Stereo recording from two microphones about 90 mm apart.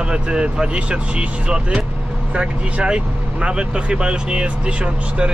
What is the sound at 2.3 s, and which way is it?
Speech, 10° right (ahead or behind).